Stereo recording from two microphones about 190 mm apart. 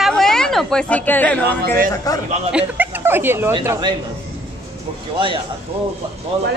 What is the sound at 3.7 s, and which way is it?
Speech, 20° right (ahead or behind).